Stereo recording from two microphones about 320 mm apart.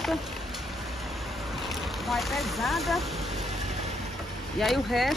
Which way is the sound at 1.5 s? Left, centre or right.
Centre.